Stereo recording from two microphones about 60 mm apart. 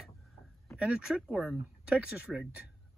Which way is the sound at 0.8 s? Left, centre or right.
Centre.